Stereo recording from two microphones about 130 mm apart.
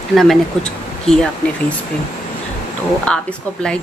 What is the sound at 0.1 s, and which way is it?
Speech, centre (ahead or behind).